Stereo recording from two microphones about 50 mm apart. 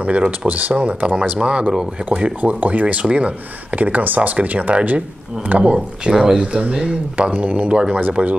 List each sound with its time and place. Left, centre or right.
0.0 s speech: right
6.0 s speech: centre
6.4 s speech: right